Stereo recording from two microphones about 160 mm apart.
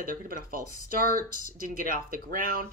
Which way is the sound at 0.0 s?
60° right (ahead or behind).